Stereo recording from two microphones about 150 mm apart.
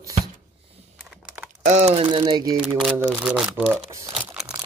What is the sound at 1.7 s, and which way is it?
Speech, 45° right (ahead or behind).